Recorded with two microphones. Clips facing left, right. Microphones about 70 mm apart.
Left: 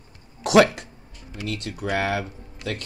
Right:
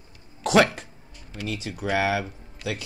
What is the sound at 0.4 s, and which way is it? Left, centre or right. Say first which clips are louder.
Speech: left 3 dB; centre.